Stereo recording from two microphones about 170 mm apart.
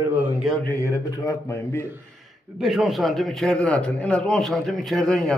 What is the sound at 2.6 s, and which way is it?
A man's voice, centre (ahead or behind).